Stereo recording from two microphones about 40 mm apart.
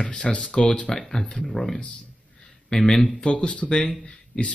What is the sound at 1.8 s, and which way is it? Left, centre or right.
Speech, left.